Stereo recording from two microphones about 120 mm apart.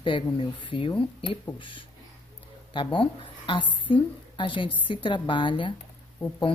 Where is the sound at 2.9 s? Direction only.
45° left (ahead or behind).